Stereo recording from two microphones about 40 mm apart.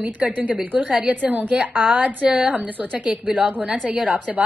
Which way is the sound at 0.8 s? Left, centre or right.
Right.